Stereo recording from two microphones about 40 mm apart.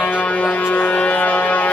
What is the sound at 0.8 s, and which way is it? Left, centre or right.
Music, left.